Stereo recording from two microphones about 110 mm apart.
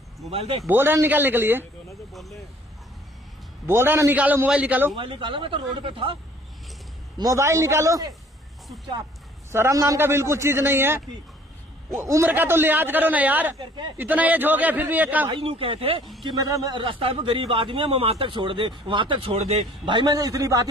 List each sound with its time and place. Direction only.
0.3 s a man's voice: 65° right (ahead or behind)
0.7 s a man's voice: 20° right (ahead or behind)
3.6 s a man's voice: 20° right (ahead or behind)
4.9 s a man's voice: 55° right (ahead or behind)
7.2 s a man's voice: 30° right (ahead or behind)
9.5 s a man's voice: 25° right (ahead or behind)
13.6 s a man's voice: 45° right (ahead or behind)
13.9 s a man's voice: 15° right (ahead or behind)
15.2 s a man's voice: 50° right (ahead or behind)
16.3 s a man's voice: 35° right (ahead or behind)
16.7 s a man's voice: 50° right (ahead or behind)
19.3 s a man's voice: 65° right (ahead or behind); by 20.2 s 50° right (ahead or behind)
20.2 s a man's voice: 30° right (ahead or behind)